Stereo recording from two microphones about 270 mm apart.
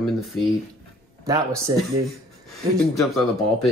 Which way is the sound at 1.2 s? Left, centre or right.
Centre.